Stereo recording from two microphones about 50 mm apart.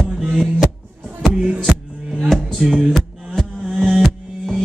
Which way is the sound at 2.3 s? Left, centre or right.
Centre.